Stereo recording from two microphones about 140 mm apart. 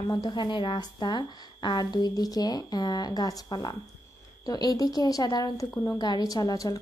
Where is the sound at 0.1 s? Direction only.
30° left (ahead or behind).